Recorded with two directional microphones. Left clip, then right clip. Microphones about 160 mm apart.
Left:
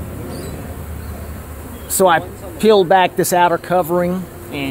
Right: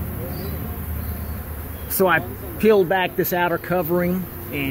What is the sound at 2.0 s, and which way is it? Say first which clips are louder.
Speech: left 6 dB; 10° left (ahead or behind).